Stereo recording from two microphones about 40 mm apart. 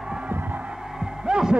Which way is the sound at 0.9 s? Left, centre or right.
Centre.